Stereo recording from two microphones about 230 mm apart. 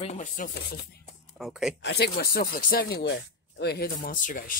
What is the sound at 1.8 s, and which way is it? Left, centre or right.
Speech, left.